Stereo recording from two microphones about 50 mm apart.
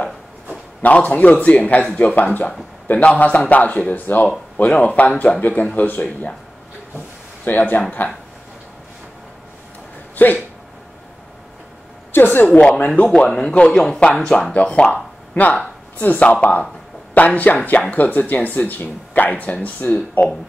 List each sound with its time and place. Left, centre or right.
0.8 s speech: left
7.4 s speech: left
10.1 s speech: left
12.1 s a woman's voice: left
12.4 s a man's voice: left